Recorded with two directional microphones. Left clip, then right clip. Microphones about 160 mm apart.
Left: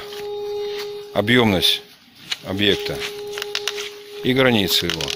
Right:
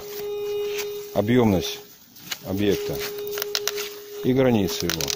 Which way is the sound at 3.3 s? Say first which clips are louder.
Left 2 dB; 30° right (ahead or behind).